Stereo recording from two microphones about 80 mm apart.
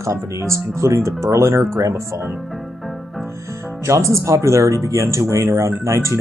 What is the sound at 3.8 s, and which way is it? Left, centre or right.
Speech, right.